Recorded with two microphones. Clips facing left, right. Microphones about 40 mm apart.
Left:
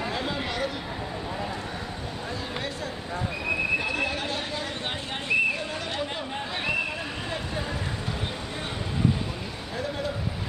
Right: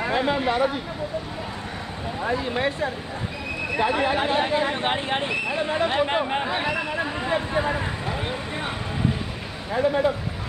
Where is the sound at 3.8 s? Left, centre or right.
Right.